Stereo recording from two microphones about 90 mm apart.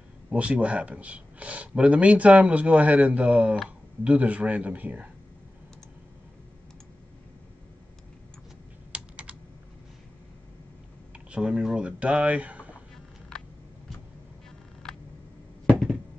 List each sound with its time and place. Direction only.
0.3 s speech: 15° right (ahead or behind)
8.9 s computer keyboard: 15° right (ahead or behind)
11.2 s speech: 10° right (ahead or behind)